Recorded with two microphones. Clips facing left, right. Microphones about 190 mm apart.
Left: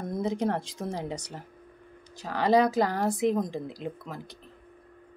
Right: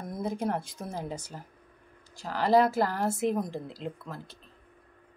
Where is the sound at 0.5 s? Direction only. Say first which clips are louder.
Left 2 dB; 90° left.